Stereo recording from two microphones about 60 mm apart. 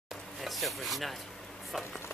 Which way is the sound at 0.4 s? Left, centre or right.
Centre.